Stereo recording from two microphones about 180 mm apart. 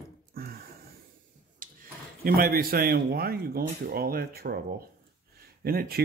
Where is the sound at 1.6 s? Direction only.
50° right (ahead or behind).